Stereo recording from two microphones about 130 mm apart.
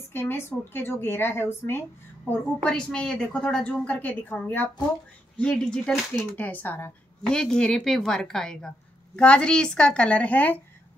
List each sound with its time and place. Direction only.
0.1 s speech: 15° left (ahead or behind)
2.6 s speech: 5° left (ahead or behind)